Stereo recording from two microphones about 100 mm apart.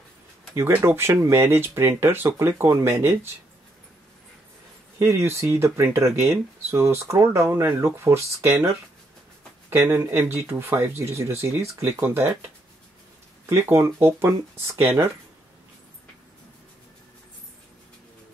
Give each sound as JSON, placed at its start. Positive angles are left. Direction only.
{"t": 0.6, "sound": "speech", "side_deg": -25}
{"t": 4.9, "sound": "speech", "side_deg": -30}
{"t": 13.5, "sound": "speech", "side_deg": -30}